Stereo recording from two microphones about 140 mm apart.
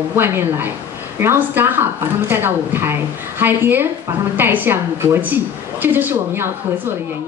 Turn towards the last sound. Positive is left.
turn(degrees=-15)  # may be behind; listen again after turning